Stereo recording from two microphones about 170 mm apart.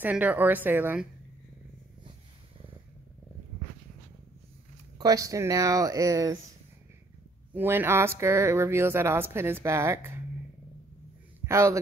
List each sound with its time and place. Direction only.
0.0 s speech: 10° right (ahead or behind)
4.9 s speech: 20° right (ahead or behind)
7.5 s speech: 15° right (ahead or behind)
11.4 s a man's voice: 15° right (ahead or behind)